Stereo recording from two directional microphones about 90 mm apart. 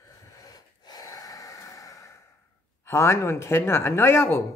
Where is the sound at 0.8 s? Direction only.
45° left (ahead or behind).